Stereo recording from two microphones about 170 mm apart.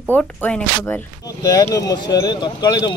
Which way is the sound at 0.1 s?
10° left (ahead or behind).